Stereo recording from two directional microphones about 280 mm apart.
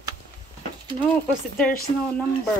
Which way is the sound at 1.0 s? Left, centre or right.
Centre.